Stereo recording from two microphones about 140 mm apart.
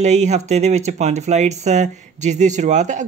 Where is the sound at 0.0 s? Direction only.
55° right (ahead or behind).